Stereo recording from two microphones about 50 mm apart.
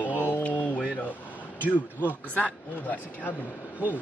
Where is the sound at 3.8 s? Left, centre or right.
Right.